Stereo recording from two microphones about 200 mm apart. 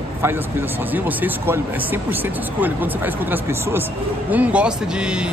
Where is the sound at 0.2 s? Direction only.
10° right (ahead or behind).